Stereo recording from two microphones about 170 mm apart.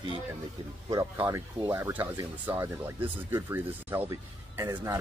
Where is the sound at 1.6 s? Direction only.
15° right (ahead or behind).